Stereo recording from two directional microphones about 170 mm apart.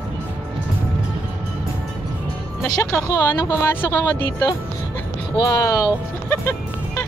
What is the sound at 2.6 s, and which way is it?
Speech, 20° left (ahead or behind).